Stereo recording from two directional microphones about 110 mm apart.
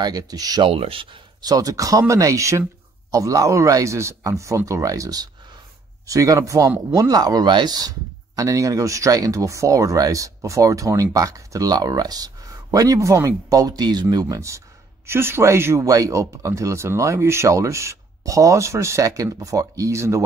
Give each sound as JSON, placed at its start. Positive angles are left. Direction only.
{"t": 0.0, "sound": "speech", "side_deg": -35}
{"t": 0.7, "sound": "speech", "side_deg": -55}
{"t": 1.4, "sound": "speech", "side_deg": -35}
{"t": 14.3, "sound": "speech", "side_deg": -25}